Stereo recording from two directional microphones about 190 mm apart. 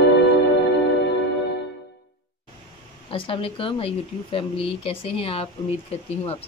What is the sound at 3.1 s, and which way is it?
Speech, 30° left (ahead or behind).